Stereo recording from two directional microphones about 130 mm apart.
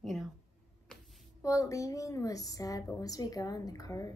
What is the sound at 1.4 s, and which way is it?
A woman's voice, 25° left (ahead or behind).